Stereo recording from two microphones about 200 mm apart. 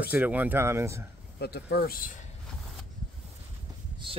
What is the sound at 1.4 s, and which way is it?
Speech, 55° left (ahead or behind).